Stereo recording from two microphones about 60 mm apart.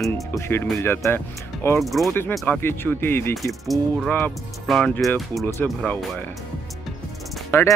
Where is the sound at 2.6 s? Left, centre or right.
Left.